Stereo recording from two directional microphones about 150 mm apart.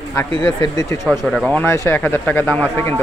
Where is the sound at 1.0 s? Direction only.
Centre (ahead or behind).